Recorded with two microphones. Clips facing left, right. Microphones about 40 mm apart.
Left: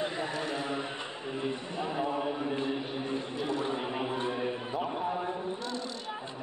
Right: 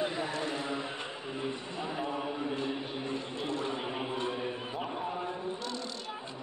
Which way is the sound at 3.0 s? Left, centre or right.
Centre.